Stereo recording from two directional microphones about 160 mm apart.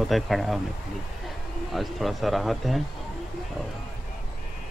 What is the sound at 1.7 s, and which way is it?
A man's voice, centre (ahead or behind).